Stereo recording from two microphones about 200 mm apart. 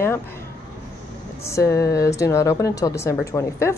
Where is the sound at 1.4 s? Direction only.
15° left (ahead or behind).